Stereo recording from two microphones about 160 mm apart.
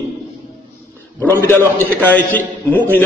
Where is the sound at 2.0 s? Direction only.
10° left (ahead or behind).